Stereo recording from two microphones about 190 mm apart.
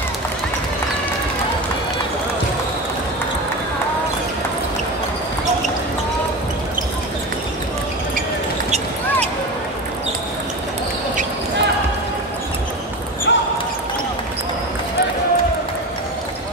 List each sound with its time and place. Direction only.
8.6 s basketball bounce: 35° right (ahead or behind)
13.3 s basketball bounce: 70° left (ahead or behind)